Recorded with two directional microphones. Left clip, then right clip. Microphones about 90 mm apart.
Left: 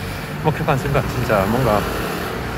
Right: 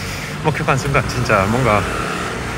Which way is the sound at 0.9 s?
20° right (ahead or behind).